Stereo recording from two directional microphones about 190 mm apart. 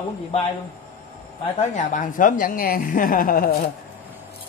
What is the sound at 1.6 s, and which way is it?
A woman's voice, 40° left (ahead or behind).